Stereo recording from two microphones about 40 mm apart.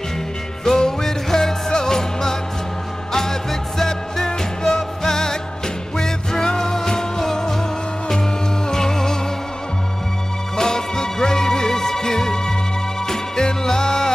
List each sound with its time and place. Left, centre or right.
0.7 s music: centre
8.6 s music: centre
10.5 s music: centre